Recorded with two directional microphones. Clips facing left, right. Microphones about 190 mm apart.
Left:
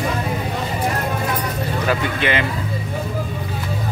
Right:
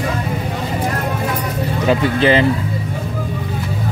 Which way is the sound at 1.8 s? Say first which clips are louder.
Right 8 dB; 25° right (ahead or behind).